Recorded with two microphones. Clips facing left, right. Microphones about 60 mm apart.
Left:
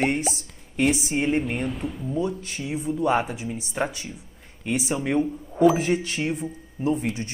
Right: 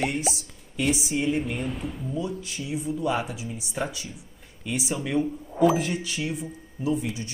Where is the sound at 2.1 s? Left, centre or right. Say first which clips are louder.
Left 5 dB; left.